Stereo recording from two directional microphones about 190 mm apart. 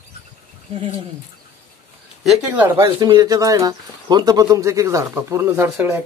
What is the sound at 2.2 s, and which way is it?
Speech, 5° right (ahead or behind).